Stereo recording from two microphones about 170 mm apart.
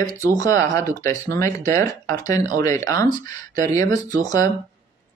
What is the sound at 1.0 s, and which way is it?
Speech, 15° left (ahead or behind).